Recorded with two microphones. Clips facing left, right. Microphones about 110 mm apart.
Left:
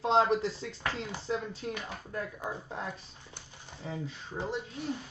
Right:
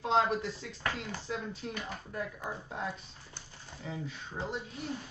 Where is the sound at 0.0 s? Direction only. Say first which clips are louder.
Left 3 dB; 30° left (ahead or behind).